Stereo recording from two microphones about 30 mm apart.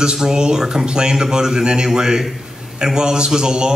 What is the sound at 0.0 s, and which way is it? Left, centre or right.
A man's voice, right.